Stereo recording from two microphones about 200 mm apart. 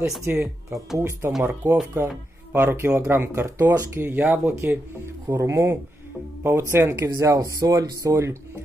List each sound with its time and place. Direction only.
0.2 s speech: 10° right (ahead or behind)